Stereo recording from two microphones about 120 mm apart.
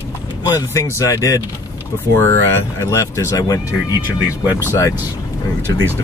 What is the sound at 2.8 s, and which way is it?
Speech, 25° left (ahead or behind).